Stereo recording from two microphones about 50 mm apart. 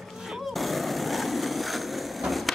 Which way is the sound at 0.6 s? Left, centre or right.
Centre.